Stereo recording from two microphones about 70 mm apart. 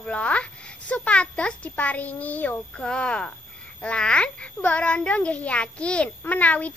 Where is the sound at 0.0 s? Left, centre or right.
Centre.